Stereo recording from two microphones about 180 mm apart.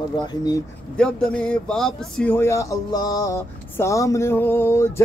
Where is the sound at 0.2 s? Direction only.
20° left (ahead or behind).